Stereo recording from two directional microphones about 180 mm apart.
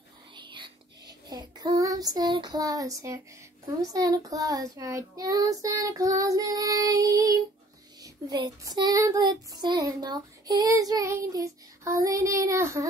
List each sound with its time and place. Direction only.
0.4 s whispering: 25° right (ahead or behind)
1.3 s child singing: 20° right (ahead or behind)